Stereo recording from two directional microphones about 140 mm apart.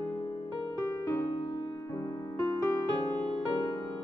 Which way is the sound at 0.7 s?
20° left (ahead or behind).